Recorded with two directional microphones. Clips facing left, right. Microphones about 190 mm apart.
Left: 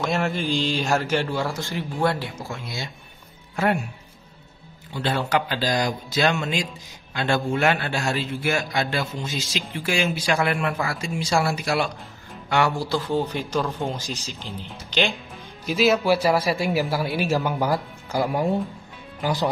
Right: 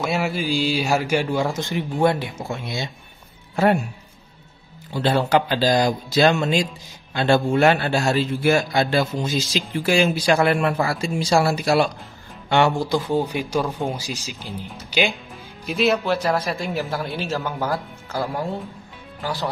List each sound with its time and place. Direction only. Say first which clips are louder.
0.0 s a man's voice: right 1 dB; 5° right (ahead or behind); by 2.9 s 20° right (ahead or behind)
3.5 s speech: right 4 dB; 35° right (ahead or behind)
4.9 s speech: right 5 dB; 35° right (ahead or behind)
12.4 s a man's voice: right 4 dB; 25° right (ahead or behind)
15.6 s speech: left 1 dB; centre (ahead or behind); by 19.5 s 15° left (ahead or behind)